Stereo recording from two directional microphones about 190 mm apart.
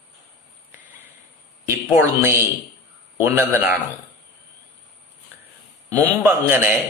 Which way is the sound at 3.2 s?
10° right (ahead or behind).